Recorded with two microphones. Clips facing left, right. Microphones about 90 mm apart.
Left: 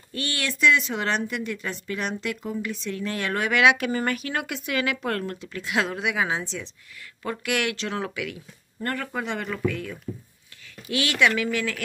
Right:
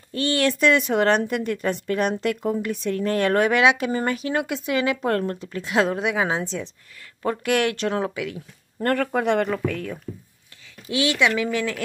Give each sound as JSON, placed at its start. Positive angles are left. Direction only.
{"t": 0.1, "sound": "speech", "side_deg": -35}
{"t": 8.0, "sound": "speech", "side_deg": -30}
{"t": 8.8, "sound": "speech", "side_deg": -55}
{"t": 9.5, "sound": "speech", "side_deg": -40}
{"t": 10.9, "sound": "speech", "side_deg": -20}